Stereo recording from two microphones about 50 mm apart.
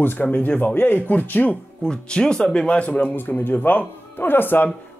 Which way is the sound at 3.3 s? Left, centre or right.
Left.